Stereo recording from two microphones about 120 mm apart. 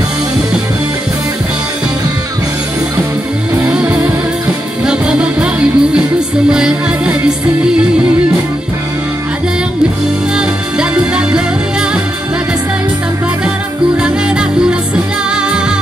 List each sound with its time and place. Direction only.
3.7 s music: 15° right (ahead or behind)
10.3 s music: 5° right (ahead or behind)